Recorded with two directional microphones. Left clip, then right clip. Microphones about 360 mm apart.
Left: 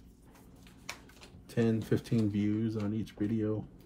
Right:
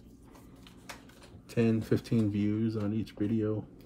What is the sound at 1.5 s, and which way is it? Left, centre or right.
Speech, centre.